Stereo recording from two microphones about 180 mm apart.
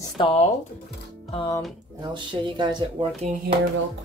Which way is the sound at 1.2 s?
30° left (ahead or behind).